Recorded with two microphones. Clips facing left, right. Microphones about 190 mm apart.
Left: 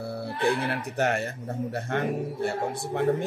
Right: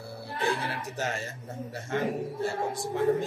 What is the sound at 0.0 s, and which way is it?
Speech, 60° left (ahead or behind).